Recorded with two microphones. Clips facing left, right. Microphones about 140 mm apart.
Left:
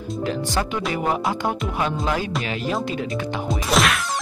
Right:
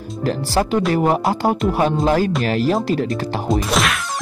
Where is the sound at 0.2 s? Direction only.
40° right (ahead or behind).